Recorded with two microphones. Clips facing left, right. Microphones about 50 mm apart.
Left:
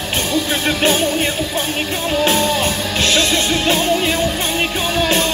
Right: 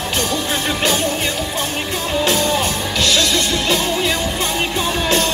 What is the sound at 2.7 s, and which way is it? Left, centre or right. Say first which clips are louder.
Music: left 1 dB; left.